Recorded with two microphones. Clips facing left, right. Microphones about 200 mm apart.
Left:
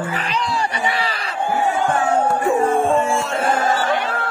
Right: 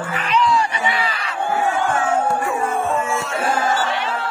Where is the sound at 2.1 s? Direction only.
35° left (ahead or behind).